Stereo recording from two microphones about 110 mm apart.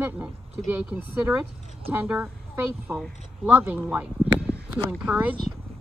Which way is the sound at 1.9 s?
10° right (ahead or behind).